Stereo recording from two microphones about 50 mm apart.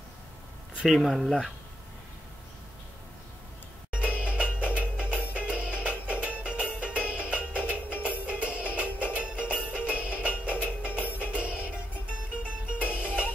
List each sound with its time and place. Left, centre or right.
0.8 s speech: centre
3.9 s music: right